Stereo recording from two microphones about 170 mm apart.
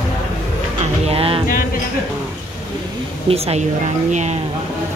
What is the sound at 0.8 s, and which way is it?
Speech, 35° right (ahead or behind).